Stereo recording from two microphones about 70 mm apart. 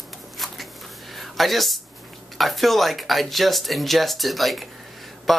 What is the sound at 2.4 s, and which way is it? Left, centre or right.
Speech, centre.